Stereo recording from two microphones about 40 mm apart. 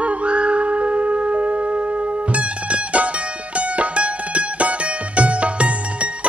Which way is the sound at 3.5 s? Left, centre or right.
Right.